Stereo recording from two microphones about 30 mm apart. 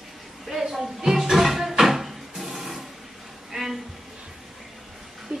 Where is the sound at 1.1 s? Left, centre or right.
Centre.